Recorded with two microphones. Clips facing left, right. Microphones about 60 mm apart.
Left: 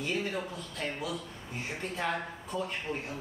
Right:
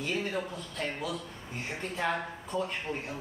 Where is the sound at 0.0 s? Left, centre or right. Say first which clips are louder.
Even; centre.